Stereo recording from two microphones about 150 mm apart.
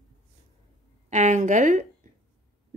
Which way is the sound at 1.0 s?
50° right (ahead or behind).